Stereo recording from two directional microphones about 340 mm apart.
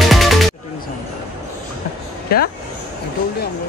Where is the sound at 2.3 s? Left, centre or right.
Left.